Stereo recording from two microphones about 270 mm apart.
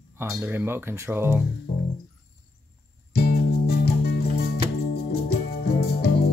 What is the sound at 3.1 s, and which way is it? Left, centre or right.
Music, left.